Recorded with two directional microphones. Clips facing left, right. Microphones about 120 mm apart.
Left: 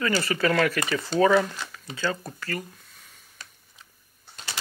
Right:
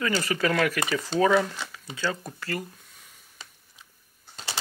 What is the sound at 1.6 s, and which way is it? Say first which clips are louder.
Speech: left 1 dB; 10° right (ahead or behind).